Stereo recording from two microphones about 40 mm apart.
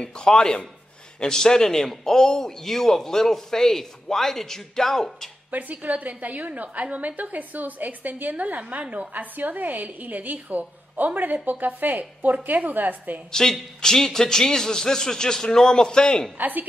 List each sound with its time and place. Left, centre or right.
0.0 s a man's voice: left
5.5 s a woman's voice: right
13.3 s a man's voice: centre
16.3 s a woman's voice: right